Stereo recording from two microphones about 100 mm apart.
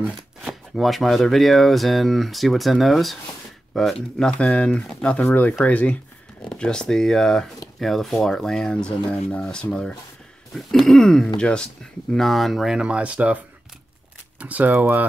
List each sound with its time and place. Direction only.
0.4 s speech: centre (ahead or behind)
14.4 s speech: 15° right (ahead or behind)